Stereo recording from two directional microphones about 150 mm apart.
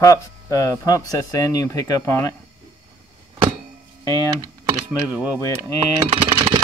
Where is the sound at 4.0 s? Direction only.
25° left (ahead or behind).